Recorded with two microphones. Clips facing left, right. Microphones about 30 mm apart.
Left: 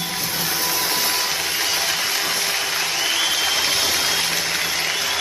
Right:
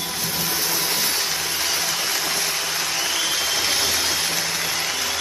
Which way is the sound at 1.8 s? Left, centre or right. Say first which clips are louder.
Left 2 dB; centre.